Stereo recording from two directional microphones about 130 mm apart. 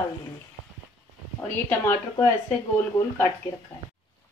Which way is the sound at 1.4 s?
15° left (ahead or behind).